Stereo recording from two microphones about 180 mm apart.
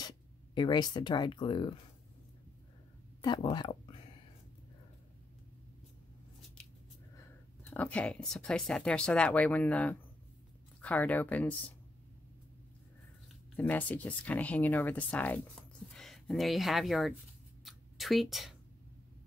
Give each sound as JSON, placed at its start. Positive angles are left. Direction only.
{"t": 0.6, "sound": "speech", "side_deg": 25}
{"t": 3.2, "sound": "speech", "side_deg": 25}
{"t": 7.7, "sound": "speech", "side_deg": 10}
{"t": 13.6, "sound": "speech", "side_deg": 10}
{"t": 17.6, "sound": "a sound", "side_deg": 0}